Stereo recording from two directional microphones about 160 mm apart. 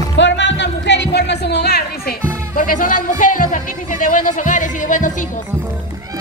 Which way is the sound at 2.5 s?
60° left (ahead or behind).